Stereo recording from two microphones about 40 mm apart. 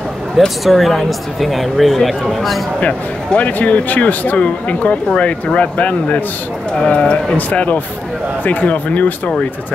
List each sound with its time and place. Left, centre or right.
0.7 s speech: centre
2.8 s speech: left
7.3 s speech: left